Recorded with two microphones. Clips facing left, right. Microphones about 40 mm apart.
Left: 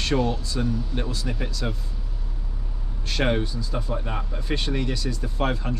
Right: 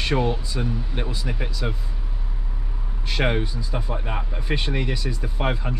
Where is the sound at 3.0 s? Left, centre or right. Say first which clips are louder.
Even; centre.